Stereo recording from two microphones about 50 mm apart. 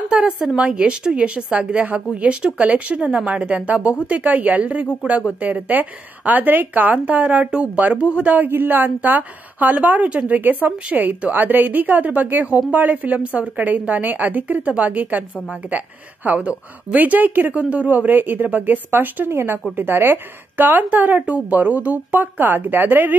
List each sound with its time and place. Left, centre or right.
0.1 s a sound: right
0.6 s a woman's voice: right
8.4 s a woman's voice: right
16.3 s a woman's voice: right